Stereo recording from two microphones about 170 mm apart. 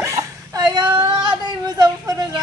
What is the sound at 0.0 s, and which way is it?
Whimper, 20° right (ahead or behind).